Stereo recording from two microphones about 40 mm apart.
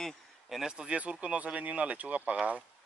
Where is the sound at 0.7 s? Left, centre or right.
Right.